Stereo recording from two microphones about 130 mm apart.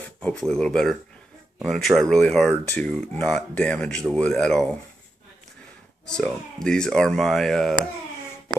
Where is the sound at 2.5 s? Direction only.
15° left (ahead or behind).